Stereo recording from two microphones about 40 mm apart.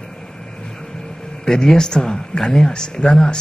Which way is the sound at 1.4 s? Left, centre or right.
Centre.